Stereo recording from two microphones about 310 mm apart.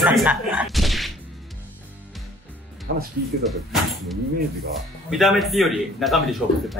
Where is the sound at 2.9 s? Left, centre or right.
Right.